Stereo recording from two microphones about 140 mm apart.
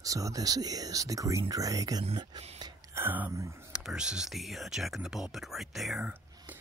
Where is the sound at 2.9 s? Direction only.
15° right (ahead or behind).